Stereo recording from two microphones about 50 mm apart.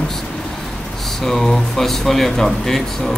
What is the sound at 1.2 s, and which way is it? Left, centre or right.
Speech, centre.